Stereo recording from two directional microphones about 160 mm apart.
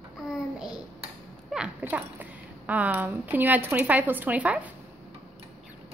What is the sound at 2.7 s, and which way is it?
Speech, 10° right (ahead or behind).